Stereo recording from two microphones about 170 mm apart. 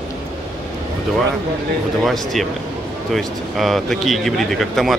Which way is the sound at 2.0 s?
Centre (ahead or behind).